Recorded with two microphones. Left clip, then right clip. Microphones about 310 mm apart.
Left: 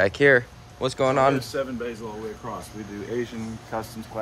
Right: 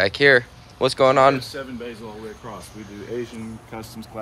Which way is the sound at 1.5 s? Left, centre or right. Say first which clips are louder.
Left 5 dB; centre.